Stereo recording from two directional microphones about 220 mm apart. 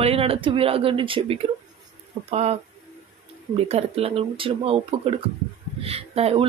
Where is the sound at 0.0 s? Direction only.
25° right (ahead or behind).